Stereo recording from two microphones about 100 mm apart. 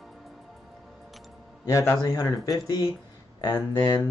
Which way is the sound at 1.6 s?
30° left (ahead or behind).